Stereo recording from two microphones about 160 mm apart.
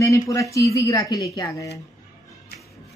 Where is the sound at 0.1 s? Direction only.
20° left (ahead or behind).